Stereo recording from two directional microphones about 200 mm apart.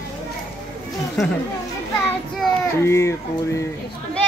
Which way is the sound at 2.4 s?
15° left (ahead or behind).